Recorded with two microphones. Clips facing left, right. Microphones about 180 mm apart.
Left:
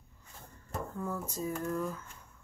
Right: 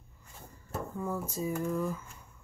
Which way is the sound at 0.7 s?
10° right (ahead or behind).